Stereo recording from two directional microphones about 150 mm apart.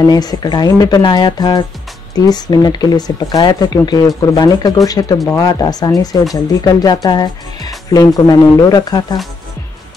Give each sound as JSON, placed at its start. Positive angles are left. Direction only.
{"t": 0.0, "sound": "speech", "side_deg": 25}